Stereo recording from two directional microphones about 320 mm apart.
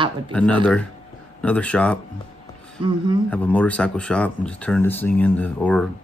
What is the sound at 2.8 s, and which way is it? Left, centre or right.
Speech, centre.